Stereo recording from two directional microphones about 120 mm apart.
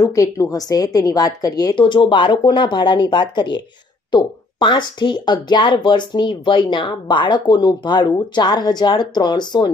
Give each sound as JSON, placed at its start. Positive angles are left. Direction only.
{"t": 0.0, "sound": "speech", "side_deg": 25}